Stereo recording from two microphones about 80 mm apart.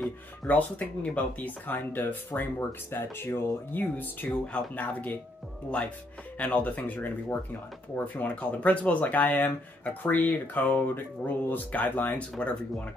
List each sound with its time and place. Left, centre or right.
0.5 s speech: centre; by 3.5 s left
3.7 s speech: left
6.3 s speech: centre